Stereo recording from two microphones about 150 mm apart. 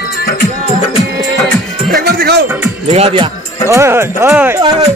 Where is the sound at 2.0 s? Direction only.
90° right.